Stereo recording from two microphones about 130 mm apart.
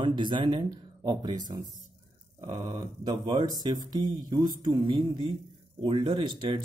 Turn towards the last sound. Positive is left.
turn(degrees=-35)  # may be behind; listen again after turning